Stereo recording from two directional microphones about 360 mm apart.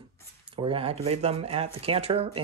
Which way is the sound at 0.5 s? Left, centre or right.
Centre.